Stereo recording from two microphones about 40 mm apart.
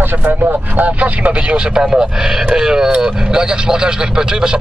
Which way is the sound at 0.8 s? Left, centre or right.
Right.